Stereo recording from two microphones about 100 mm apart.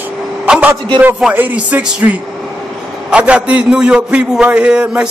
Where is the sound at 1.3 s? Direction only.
15° right (ahead or behind).